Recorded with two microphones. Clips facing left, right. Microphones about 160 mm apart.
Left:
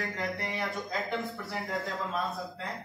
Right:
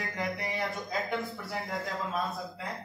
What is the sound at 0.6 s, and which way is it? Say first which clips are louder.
A man's voice: even; centre (ahead or behind).